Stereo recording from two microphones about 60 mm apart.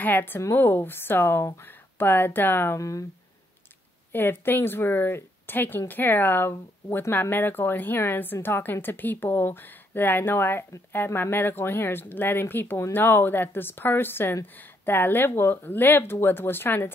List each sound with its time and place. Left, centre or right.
0.0 s speech: left
2.8 s speech: left
4.1 s speech: left